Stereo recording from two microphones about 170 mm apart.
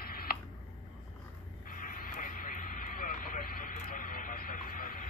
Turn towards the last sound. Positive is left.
turn(degrees=50)  # may be behind; listen again after turning